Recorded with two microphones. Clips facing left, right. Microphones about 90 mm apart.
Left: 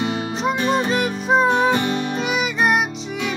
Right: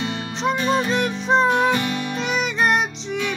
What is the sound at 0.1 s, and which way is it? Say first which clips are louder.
Music: left 1 dB; 5° left (ahead or behind).